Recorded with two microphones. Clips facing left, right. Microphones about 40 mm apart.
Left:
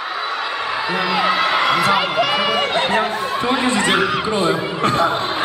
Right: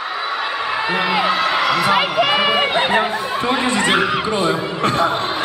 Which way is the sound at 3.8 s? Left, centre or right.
Centre.